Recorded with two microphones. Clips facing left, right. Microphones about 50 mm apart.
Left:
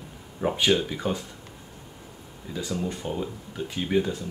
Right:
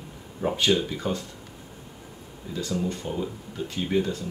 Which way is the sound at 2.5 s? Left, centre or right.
Centre.